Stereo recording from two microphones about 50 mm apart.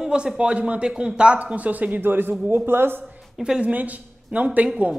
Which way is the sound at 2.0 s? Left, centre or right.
Right.